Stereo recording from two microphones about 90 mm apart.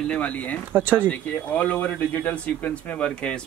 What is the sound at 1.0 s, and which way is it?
Speech, 15° left (ahead or behind).